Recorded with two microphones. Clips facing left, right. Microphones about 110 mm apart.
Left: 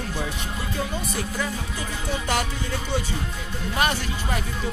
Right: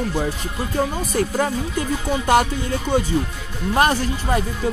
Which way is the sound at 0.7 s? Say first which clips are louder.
Right 9 dB; 50° right (ahead or behind).